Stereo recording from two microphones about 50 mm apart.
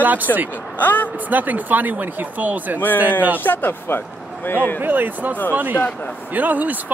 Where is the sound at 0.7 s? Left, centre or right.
Left.